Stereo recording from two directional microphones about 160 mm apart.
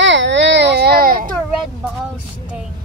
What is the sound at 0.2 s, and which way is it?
Baby cry, 90° right.